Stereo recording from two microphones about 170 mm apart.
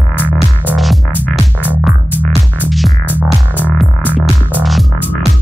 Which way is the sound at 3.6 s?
10° left (ahead or behind).